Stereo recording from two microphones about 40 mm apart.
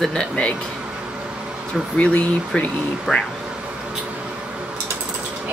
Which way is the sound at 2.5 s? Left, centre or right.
Left.